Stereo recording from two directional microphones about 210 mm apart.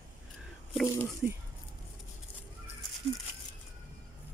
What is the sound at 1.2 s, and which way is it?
Speech, 10° right (ahead or behind).